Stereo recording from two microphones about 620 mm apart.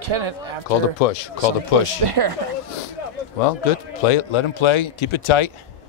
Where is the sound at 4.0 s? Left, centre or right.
Left.